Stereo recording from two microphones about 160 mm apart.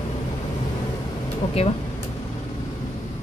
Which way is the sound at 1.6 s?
35° left (ahead or behind).